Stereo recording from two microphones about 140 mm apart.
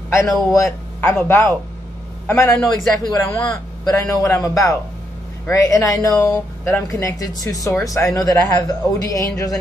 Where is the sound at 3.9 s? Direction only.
20° left (ahead or behind).